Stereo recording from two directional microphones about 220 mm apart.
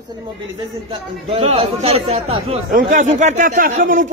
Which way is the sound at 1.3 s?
25° right (ahead or behind).